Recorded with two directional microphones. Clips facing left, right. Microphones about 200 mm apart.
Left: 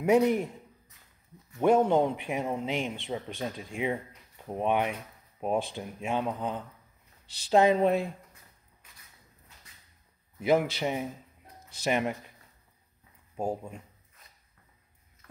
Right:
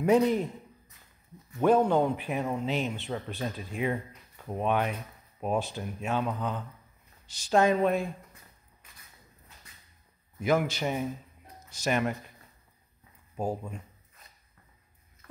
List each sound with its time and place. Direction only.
0.0 s speech: 15° left (ahead or behind)
1.6 s speech: 15° left (ahead or behind)
10.4 s speech: 25° left (ahead or behind)
13.4 s speech: 15° left (ahead or behind)